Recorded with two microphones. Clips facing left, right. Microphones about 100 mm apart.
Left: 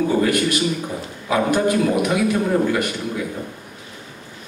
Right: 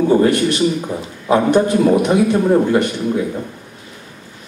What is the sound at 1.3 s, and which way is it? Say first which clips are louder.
A man's voice: right 5 dB; 30° right (ahead or behind).